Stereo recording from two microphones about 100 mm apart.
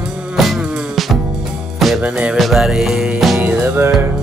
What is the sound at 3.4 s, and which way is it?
Music, 20° right (ahead or behind).